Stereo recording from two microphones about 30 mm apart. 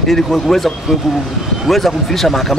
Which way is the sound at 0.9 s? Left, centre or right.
Centre.